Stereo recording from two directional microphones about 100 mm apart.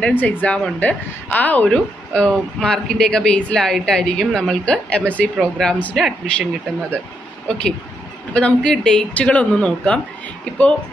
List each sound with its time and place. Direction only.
0.0 s speech: 15° left (ahead or behind)
7.4 s speech: 10° left (ahead or behind)